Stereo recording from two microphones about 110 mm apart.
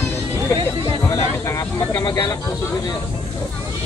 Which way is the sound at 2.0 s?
40° left (ahead or behind).